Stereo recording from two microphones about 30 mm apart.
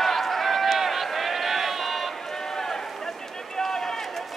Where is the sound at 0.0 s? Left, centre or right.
Centre.